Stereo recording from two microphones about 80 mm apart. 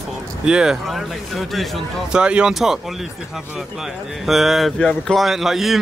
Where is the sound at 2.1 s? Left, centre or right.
Centre.